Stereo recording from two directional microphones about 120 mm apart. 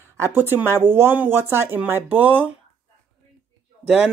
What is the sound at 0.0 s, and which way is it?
Speech, 20° right (ahead or behind).